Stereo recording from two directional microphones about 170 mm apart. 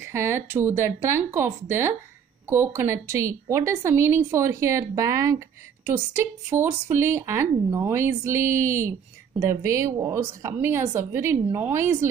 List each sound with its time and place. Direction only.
0.0 s speech: 15° right (ahead or behind)